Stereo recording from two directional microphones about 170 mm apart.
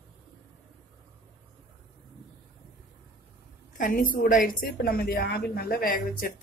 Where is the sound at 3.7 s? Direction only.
50° left (ahead or behind).